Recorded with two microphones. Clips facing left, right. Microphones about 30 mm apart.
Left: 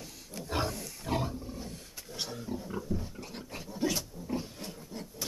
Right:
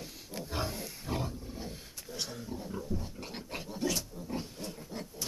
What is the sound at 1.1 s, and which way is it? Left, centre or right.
Wild animals, left.